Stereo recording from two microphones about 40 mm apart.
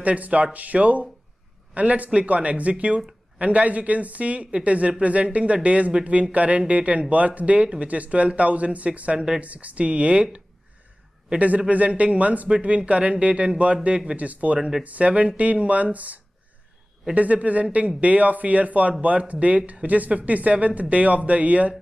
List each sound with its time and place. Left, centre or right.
0.0 s a man's voice: right